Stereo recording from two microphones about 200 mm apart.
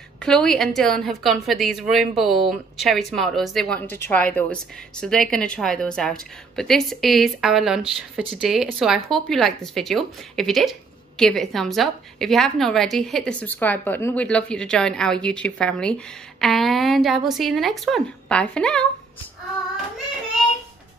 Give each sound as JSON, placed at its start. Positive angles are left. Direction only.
{"t": 0.2, "sound": "speech", "side_deg": 5}